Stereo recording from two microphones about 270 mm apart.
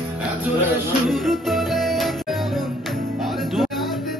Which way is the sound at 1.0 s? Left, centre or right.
Centre.